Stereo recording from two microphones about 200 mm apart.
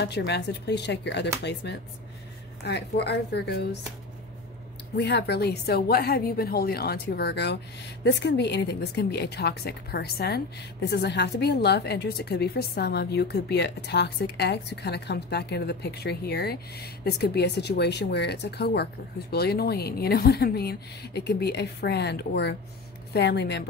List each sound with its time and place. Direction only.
0.0 s a woman's voice: 55° left (ahead or behind)
4.9 s a woman's voice: 60° left (ahead or behind)